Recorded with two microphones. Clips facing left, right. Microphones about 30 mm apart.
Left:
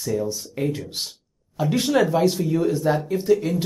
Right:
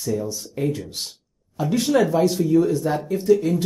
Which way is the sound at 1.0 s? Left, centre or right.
Centre.